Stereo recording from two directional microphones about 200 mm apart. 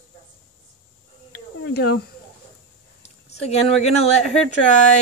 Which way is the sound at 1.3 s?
55° left (ahead or behind).